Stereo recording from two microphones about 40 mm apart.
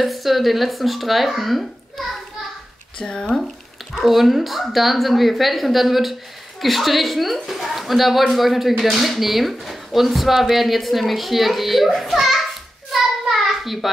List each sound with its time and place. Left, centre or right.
0.0 s speech: centre
3.0 s speech: left
3.9 s speech: centre
12.9 s a sound: centre